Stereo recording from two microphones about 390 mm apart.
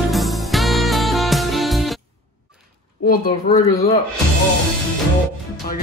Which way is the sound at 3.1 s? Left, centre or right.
Centre.